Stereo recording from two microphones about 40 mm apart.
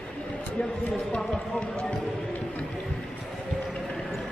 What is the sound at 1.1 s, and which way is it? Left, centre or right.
Run, left.